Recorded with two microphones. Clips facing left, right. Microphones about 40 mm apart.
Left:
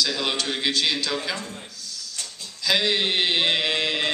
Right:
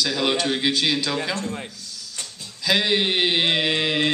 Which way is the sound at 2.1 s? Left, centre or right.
Centre.